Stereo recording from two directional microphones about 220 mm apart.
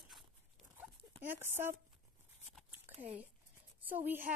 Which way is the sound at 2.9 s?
30° right (ahead or behind).